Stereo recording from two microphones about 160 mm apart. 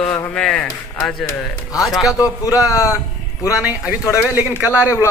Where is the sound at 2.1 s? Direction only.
20° left (ahead or behind).